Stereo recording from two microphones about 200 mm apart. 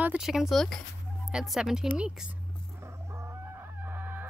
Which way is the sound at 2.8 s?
15° right (ahead or behind).